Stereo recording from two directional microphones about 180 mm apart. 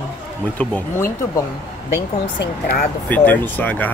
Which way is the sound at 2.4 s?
55° left (ahead or behind).